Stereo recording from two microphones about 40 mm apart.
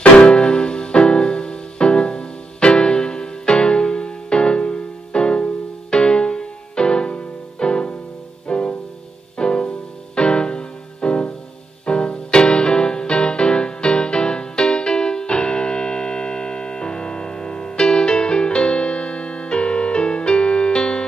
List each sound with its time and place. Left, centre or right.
0.0 s music: left